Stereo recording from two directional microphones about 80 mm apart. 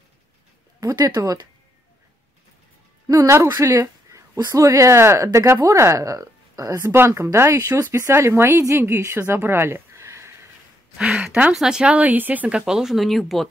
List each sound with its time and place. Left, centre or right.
0.9 s speech: right
3.2 s speech: right
3.4 s speech: right
6.7 s speech: right
11.0 s speech: centre